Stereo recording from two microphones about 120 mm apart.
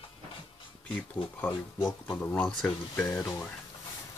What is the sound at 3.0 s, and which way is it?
Speech, 25° left (ahead or behind).